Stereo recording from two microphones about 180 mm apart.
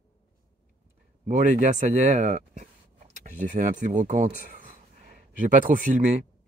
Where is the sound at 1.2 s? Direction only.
45° right (ahead or behind).